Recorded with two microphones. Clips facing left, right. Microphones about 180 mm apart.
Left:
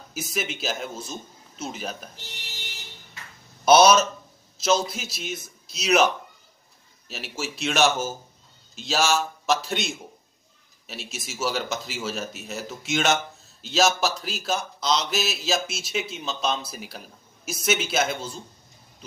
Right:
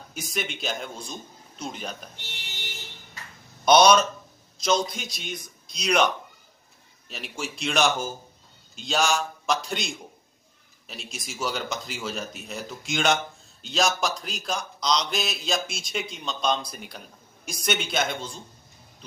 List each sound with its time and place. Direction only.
0.1 s speech: 5° left (ahead or behind)
3.6 s speech: 5° left (ahead or behind)